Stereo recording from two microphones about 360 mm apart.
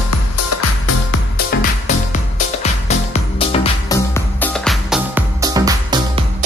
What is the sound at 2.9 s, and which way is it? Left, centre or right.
Music, centre.